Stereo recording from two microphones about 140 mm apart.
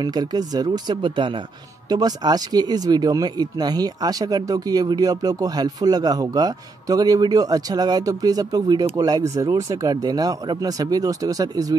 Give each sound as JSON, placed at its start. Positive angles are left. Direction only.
{"t": 0.0, "sound": "speech", "side_deg": -30}